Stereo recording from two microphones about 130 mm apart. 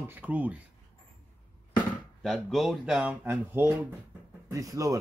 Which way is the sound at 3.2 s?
15° right (ahead or behind).